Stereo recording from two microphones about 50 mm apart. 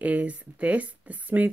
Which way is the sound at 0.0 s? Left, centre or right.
Right.